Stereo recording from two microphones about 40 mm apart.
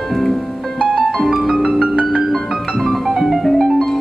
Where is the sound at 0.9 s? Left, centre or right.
Right.